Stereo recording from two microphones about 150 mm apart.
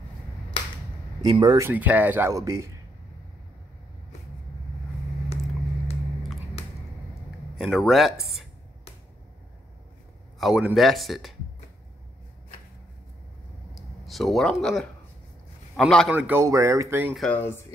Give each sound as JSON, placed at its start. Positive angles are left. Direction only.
{"t": 1.2, "sound": "speech", "side_deg": -30}
{"t": 1.6, "sound": "speech", "side_deg": -10}
{"t": 7.5, "sound": "speech", "side_deg": 0}
{"t": 10.4, "sound": "speech", "side_deg": 0}
{"t": 13.7, "sound": "a man's voice", "side_deg": 0}
{"t": 16.1, "sound": "speech", "side_deg": -10}
{"t": 17.1, "sound": "speech", "side_deg": 0}
{"t": 17.4, "sound": "speech", "side_deg": 15}